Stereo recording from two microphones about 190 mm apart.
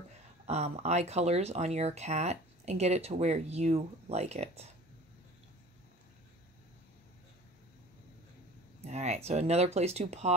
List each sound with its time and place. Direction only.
0.5 s speech: 35° right (ahead or behind)
8.8 s speech: 35° right (ahead or behind)